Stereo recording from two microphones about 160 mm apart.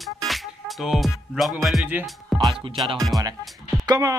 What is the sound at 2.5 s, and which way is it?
Speech, 35° right (ahead or behind).